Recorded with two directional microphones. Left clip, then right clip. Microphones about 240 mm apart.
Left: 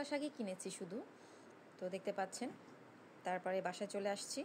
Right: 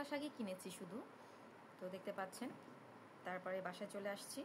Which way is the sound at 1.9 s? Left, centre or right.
Centre.